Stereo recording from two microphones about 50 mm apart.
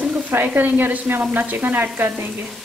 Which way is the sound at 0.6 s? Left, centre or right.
Right.